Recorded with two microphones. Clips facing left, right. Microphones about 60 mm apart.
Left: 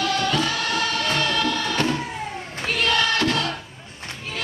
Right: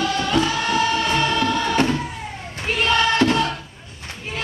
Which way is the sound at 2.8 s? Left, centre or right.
Right.